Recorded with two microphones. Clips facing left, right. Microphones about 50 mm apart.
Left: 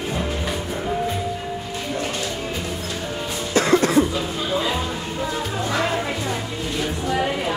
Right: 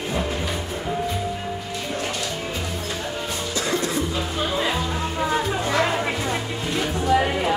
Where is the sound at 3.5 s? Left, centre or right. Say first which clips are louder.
Left 8 dB; left.